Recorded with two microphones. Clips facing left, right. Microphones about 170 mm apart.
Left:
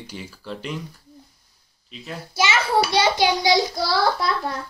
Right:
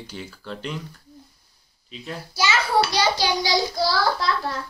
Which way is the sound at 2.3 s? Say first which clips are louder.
Left 1 dB; 20° left (ahead or behind).